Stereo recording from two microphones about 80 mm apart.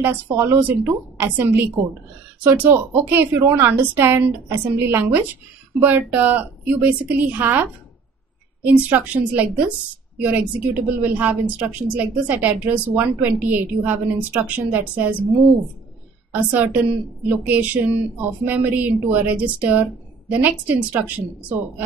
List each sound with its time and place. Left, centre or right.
0.0 s a woman's voice: right
8.6 s a woman's voice: right